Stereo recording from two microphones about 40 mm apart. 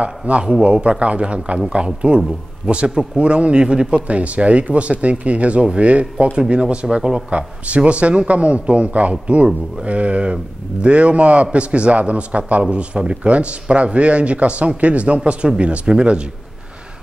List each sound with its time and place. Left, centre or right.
0.0 s speech: right